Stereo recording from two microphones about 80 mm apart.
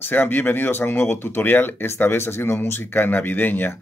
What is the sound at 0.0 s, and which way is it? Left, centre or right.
Speech, left.